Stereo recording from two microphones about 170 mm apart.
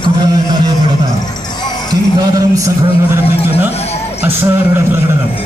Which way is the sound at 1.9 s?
20° right (ahead or behind).